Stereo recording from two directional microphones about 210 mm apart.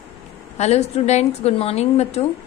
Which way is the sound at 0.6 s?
30° left (ahead or behind).